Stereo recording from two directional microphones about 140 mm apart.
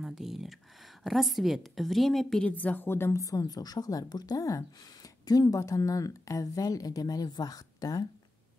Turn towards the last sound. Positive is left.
turn(degrees=25)  # may be behind; listen again after turning